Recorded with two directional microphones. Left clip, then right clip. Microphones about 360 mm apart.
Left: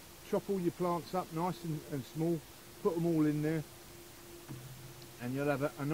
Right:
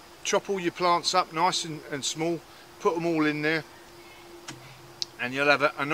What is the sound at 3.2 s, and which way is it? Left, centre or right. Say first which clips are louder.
Speech: right 8 dB; centre.